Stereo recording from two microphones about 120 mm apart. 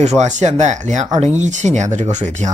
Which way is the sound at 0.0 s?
70° right (ahead or behind).